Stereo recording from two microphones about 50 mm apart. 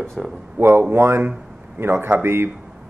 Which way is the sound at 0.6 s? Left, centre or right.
Right.